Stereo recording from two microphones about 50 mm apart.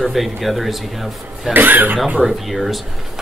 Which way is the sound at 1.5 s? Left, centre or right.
Right.